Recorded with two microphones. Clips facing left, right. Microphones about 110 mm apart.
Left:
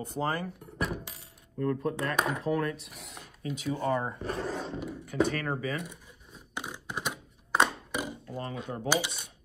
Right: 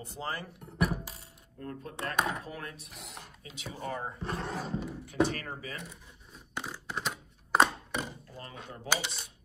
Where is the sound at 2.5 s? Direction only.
70° left (ahead or behind).